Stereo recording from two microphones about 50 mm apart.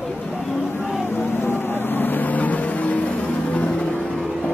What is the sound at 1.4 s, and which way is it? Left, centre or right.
Vehicle, left.